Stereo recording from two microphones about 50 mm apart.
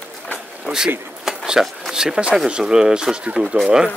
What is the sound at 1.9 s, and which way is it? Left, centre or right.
Speech, centre.